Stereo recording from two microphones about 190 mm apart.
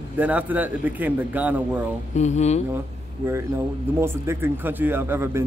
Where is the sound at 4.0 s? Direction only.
10° right (ahead or behind).